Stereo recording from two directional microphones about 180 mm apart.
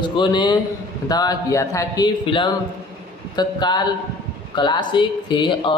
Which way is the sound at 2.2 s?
25° left (ahead or behind).